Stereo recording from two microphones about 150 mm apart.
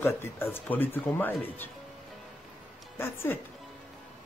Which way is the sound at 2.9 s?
15° left (ahead or behind).